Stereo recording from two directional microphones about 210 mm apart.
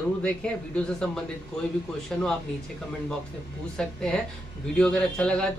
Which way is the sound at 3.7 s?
5° left (ahead or behind).